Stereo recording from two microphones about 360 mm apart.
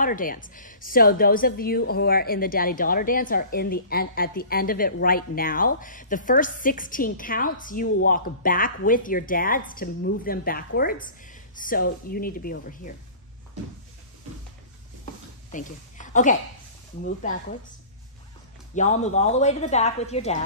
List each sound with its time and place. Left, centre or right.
0.0 s a woman's voice: left
15.5 s a woman's voice: left
18.8 s a woman's voice: centre